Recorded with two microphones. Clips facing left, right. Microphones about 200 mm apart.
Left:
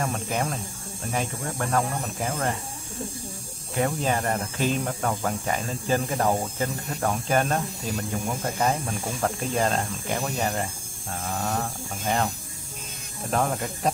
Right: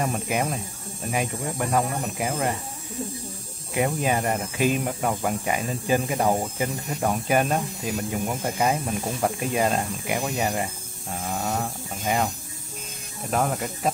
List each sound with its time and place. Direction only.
0.0 s speech: 15° right (ahead or behind)
3.7 s speech: 15° right (ahead or behind)
13.3 s speech: 5° right (ahead or behind)